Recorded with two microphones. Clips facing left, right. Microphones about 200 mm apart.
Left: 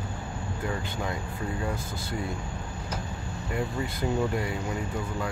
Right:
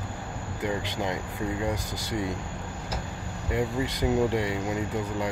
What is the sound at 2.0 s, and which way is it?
Speech, 85° right.